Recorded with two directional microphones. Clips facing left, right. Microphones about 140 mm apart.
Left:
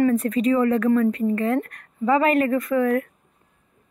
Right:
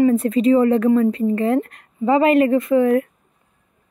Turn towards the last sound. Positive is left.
turn(degrees=-25)  # may be behind; listen again after turning